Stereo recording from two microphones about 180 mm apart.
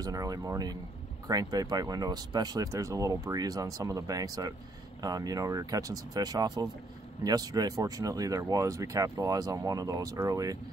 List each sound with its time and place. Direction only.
0.0 s speech: 20° right (ahead or behind)